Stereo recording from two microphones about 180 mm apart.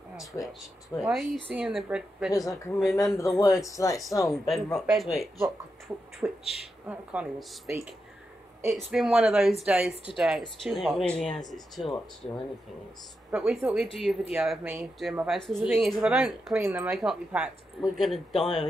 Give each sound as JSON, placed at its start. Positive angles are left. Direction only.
{"t": 0.3, "sound": "speech", "side_deg": 15}
{"t": 1.0, "sound": "speech", "side_deg": 0}
{"t": 3.3, "sound": "speech", "side_deg": 20}
{"t": 3.9, "sound": "speech", "side_deg": 0}
{"t": 5.9, "sound": "beatboxing", "side_deg": -10}
{"t": 6.2, "sound": "speech", "side_deg": 0}
{"t": 8.7, "sound": "speech", "side_deg": -5}
{"t": 13.3, "sound": "speech", "side_deg": -5}